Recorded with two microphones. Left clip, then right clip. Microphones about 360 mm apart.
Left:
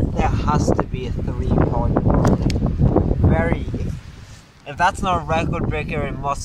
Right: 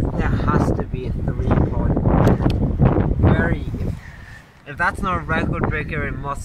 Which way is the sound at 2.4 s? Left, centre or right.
Right.